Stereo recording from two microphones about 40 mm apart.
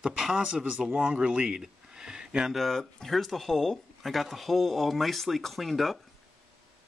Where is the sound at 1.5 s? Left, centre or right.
Centre.